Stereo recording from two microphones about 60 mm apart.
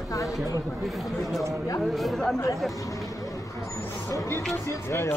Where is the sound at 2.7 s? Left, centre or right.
Left.